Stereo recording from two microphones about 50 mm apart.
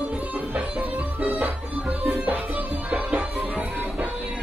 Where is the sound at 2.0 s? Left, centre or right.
Right.